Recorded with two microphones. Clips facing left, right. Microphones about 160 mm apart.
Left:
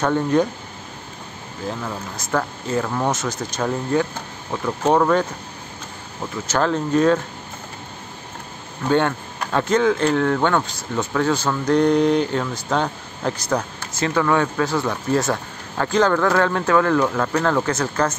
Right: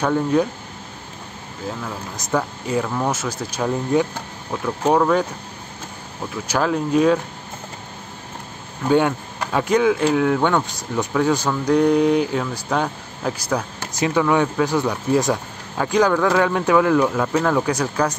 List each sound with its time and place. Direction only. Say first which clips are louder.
0.0 s speech: even; 5° right (ahead or behind)
2.1 s speech: right 2 dB; 10° right (ahead or behind)
4.5 s speech: even; centre (ahead or behind)
6.4 s speech: even; 10° right (ahead or behind)
8.8 s speech: right 2 dB; 10° right (ahead or behind)